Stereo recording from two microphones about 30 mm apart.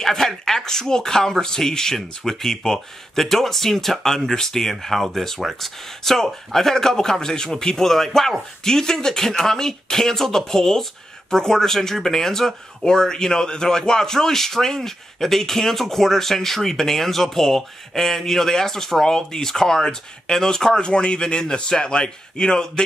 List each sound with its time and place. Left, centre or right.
0.0 s speech: centre
0.7 s a man's voice: centre
20.8 s a man's voice: left